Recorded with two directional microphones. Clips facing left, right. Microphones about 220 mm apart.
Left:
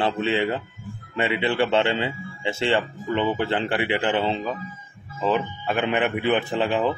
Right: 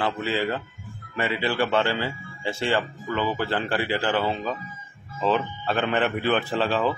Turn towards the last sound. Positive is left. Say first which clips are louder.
# left 1 dB
turn(degrees=15)  # may be behind; listen again after turning